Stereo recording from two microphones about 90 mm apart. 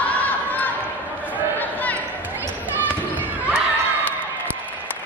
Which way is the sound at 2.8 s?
20° right (ahead or behind).